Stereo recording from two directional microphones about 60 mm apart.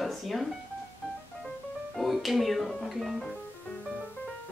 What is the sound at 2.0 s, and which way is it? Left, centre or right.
Speech, centre.